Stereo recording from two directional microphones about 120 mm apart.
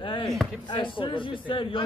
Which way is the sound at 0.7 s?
45° left (ahead or behind).